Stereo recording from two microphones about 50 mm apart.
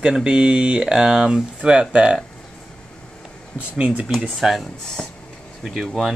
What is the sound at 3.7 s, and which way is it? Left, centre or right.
Speech, right.